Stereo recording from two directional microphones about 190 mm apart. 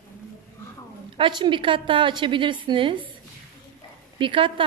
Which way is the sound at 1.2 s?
25° right (ahead or behind).